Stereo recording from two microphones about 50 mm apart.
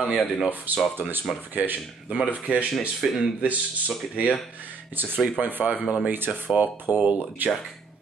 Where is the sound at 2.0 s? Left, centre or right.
Right.